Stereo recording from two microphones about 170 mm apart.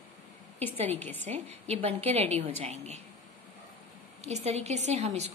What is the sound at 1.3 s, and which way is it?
A woman's voice, 40° right (ahead or behind).